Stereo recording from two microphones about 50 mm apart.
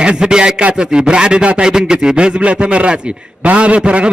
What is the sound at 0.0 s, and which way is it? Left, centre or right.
A man's voice, centre.